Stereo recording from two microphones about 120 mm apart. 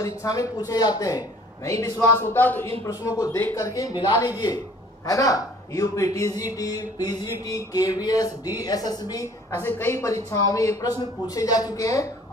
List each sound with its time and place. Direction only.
0.0 s speech: 25° left (ahead or behind)
2.8 s speech: 25° left (ahead or behind)
6.4 s a sound: 30° left (ahead or behind)
10.3 s speech: 25° left (ahead or behind)